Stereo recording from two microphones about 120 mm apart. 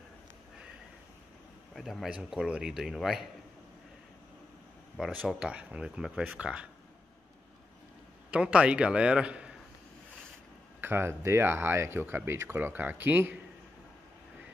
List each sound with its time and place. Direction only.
1.8 s speech: centre (ahead or behind)
4.9 s speech: 5° right (ahead or behind)
8.3 s speech: 10° right (ahead or behind)
10.8 s speech: 20° right (ahead or behind)